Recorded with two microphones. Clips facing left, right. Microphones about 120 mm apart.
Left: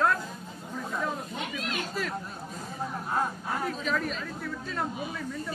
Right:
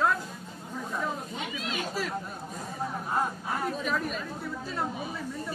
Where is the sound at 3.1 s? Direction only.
5° right (ahead or behind).